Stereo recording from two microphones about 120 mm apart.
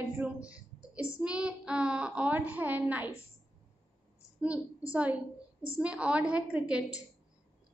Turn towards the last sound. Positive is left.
turn(degrees=-10)  # may be behind; listen again after turning